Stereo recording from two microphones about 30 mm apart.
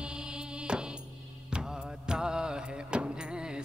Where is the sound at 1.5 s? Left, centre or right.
Right.